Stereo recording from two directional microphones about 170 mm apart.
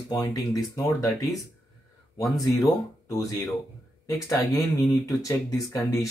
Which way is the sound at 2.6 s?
20° left (ahead or behind).